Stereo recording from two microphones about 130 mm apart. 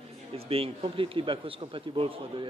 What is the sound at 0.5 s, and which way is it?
A man's voice, 45° right (ahead or behind).